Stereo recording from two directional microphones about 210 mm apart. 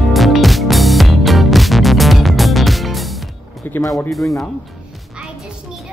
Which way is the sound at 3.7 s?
15° left (ahead or behind).